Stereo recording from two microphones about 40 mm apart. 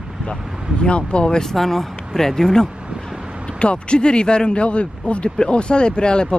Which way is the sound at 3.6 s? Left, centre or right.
Left.